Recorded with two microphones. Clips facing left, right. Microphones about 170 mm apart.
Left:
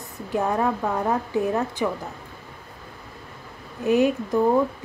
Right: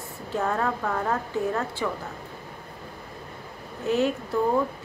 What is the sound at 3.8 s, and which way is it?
Speech, 15° left (ahead or behind).